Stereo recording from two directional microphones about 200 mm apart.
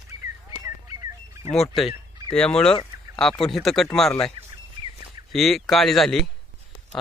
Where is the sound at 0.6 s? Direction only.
15° right (ahead or behind).